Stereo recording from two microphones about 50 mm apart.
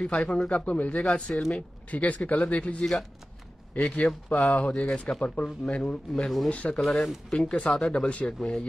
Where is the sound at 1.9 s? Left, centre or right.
Left.